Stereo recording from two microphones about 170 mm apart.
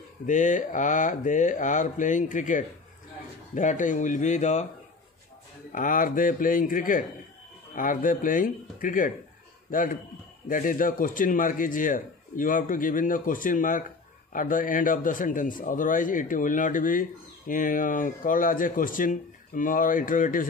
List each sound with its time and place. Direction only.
0.3 s a man's voice: 45° left (ahead or behind)
5.7 s a man's voice: 50° left (ahead or behind)